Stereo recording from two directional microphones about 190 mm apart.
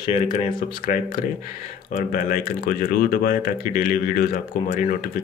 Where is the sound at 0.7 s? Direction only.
50° left (ahead or behind).